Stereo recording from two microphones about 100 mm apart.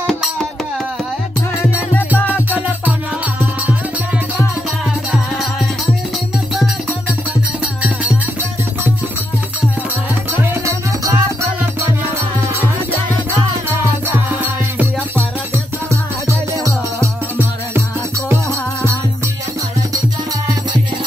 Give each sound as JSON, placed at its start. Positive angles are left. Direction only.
{"t": 0.0, "sound": "music", "side_deg": 0}
{"t": 7.6, "sound": "music", "side_deg": -15}
{"t": 10.4, "sound": "music", "side_deg": -25}
{"t": 14.0, "sound": "music", "side_deg": -20}
{"t": 15.5, "sound": "music", "side_deg": -30}